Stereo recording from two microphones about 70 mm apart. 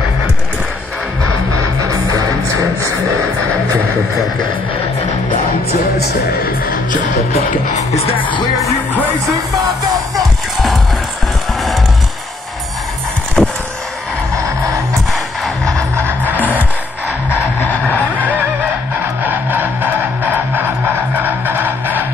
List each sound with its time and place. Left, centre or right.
13.4 s a sound: centre
17.4 s music: left
19.2 s music: right